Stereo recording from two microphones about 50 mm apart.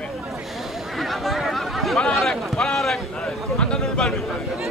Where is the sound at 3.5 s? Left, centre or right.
Centre.